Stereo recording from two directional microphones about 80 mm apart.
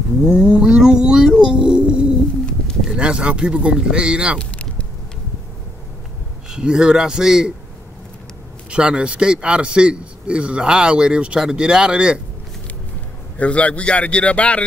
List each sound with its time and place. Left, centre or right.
0.2 s a sound: centre
2.8 s a man's voice: centre
4.4 s vehicle: centre
6.5 s a man's voice: centre
8.6 s a man's voice: centre
13.4 s speech: centre